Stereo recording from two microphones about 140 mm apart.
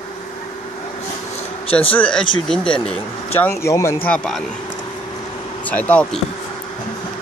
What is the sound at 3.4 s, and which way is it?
Speech, 20° left (ahead or behind).